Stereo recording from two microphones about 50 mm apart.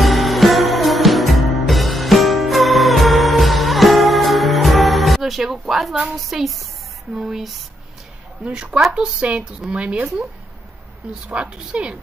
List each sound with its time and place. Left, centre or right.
0.0 s music: centre
6.0 s a woman's voice: centre; by 10.2 s right
11.4 s speech: centre